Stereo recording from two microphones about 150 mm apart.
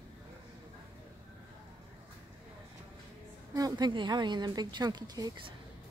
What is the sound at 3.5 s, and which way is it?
A woman's voice, 25° right (ahead or behind).